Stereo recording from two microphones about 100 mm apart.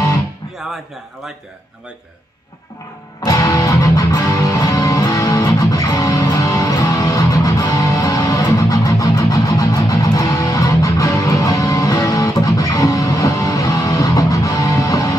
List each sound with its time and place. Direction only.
3.2 s music: 40° left (ahead or behind)